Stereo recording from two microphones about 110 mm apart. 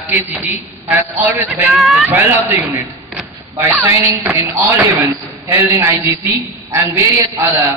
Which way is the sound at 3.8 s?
25° right (ahead or behind).